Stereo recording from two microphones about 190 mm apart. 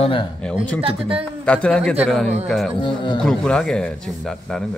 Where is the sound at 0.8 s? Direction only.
30° right (ahead or behind).